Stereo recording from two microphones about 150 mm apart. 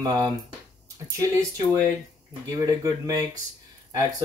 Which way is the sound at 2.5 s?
25° right (ahead or behind).